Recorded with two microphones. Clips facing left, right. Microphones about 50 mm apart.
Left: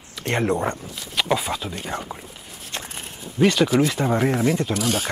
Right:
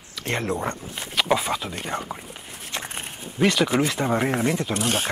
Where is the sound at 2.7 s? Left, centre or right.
Centre.